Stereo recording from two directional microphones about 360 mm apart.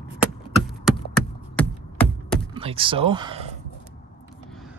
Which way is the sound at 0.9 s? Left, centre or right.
Centre.